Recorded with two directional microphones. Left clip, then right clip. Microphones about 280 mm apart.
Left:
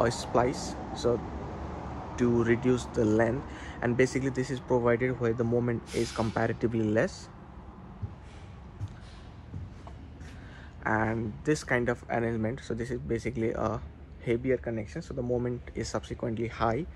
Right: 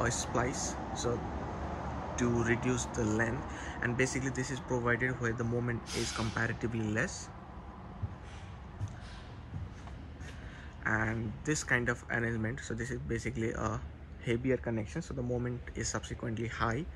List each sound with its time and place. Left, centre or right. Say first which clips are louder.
0.0 s speech: left 6 dB; centre
2.1 s speech: left 6 dB; centre
10.8 s speech: left 4 dB; centre